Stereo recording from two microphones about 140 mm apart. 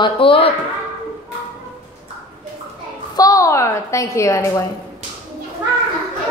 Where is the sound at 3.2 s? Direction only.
25° left (ahead or behind).